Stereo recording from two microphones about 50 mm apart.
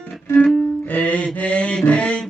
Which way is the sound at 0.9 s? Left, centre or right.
Left.